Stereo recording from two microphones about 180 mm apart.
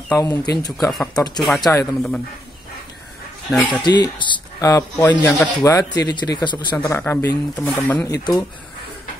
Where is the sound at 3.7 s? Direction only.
25° left (ahead or behind).